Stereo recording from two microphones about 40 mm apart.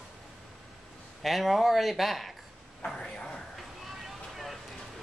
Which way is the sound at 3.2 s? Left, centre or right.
Left.